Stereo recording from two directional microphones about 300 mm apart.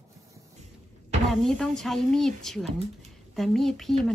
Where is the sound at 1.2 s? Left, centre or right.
Centre.